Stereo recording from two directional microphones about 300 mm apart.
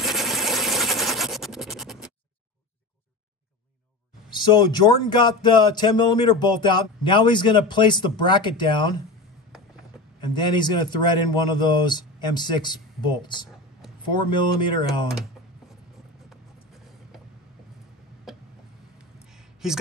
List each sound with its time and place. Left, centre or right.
0.0 s a sound: centre
4.3 s speech: centre
10.3 s speech: centre
14.6 s speech: centre
18.3 s a sound: centre
19.6 s speech: centre